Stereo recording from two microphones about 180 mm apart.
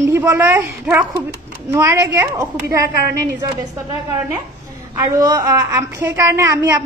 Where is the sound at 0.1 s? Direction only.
15° right (ahead or behind).